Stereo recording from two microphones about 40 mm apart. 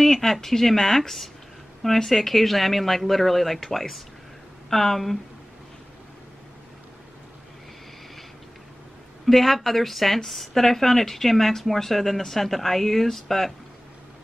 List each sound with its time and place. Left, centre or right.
0.0 s a woman's voice: centre
9.2 s a woman's voice: centre